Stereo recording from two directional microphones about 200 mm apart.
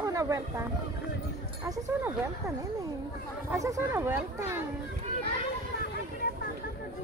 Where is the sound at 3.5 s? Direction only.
15° right (ahead or behind).